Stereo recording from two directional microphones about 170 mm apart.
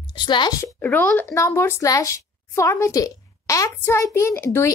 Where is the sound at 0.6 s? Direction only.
10° left (ahead or behind).